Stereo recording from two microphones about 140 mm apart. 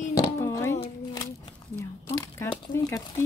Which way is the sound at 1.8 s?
20° left (ahead or behind).